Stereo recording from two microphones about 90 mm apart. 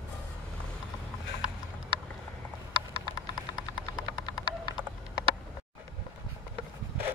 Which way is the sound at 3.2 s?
50° left (ahead or behind).